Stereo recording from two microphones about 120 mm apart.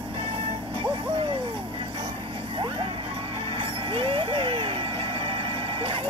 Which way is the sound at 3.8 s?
50° right (ahead or behind).